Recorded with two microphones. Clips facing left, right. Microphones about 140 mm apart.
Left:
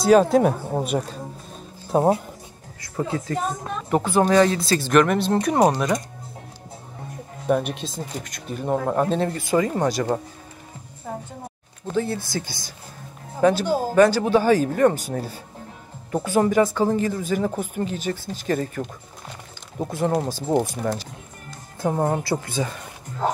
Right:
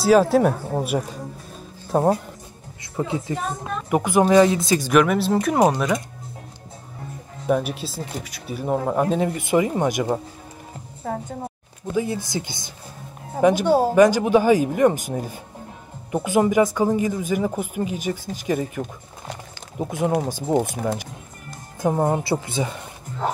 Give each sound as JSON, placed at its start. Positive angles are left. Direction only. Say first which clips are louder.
{"t": 0.0, "sound": "speech", "louder": "even", "side_deg": -5}
{"t": 3.0, "sound": "speech", "louder": "even", "side_deg": -15}
{"t": 7.4, "sound": "speech", "louder": "even", "side_deg": 0}
{"t": 11.9, "sound": "speech", "louder": "right 1 dB", "side_deg": -15}
{"t": 13.7, "sound": "speech", "louder": "right 5 dB", "side_deg": -70}
{"t": 13.9, "sound": "speech", "louder": "left 2 dB", "side_deg": -15}
{"t": 19.9, "sound": "speech", "louder": "right 1 dB", "side_deg": -10}